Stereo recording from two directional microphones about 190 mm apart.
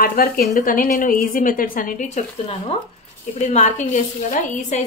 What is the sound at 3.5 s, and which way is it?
A woman's voice, 40° left (ahead or behind).